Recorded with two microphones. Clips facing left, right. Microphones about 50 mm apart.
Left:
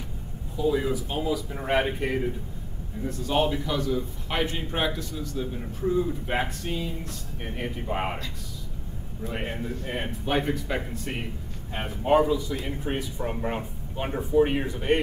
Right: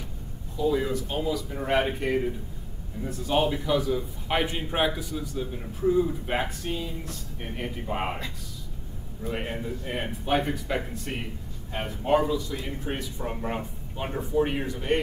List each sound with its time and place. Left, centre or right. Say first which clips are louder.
0.6 s a man's voice: even; centre
9.2 s speech: right 1 dB; centre